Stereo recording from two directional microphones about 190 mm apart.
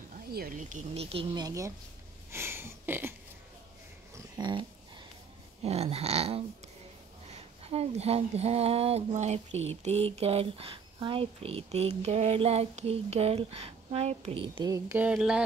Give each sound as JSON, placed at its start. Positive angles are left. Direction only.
{"t": 0.3, "sound": "speech", "side_deg": -50}
{"t": 4.1, "sound": "a sound", "side_deg": -25}
{"t": 5.6, "sound": "speech", "side_deg": -35}